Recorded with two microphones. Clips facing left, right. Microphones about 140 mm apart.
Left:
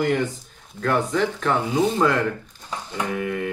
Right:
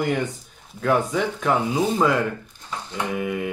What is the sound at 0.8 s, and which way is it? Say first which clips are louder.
Speech: even; 5° right (ahead or behind).